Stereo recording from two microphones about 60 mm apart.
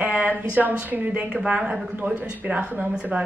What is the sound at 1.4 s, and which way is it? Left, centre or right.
A woman's voice, centre.